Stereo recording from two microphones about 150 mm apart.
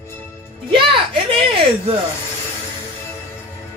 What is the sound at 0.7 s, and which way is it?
Speech, 35° right (ahead or behind).